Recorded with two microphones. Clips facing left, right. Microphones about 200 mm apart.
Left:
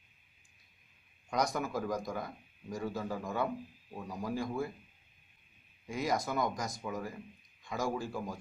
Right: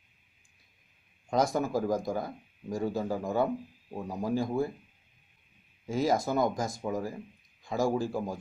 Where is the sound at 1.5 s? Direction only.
25° right (ahead or behind).